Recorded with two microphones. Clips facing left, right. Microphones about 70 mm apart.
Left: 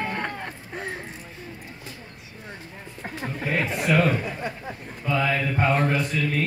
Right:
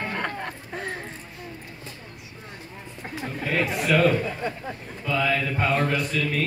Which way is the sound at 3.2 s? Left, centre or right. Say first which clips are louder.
Right 1 dB; left.